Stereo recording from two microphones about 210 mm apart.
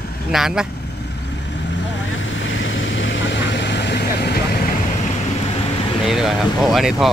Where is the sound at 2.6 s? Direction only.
65° left (ahead or behind).